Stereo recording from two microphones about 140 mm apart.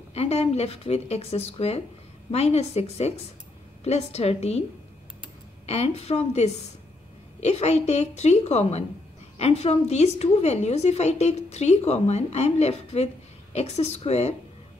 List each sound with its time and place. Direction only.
0.1 s a woman's voice: 50° left (ahead or behind)
5.7 s a woman's voice: 50° left (ahead or behind)